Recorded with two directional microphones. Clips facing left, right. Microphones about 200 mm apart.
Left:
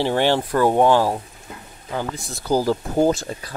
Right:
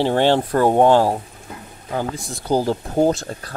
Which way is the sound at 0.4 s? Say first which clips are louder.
Right 1 dB; 35° right (ahead or behind).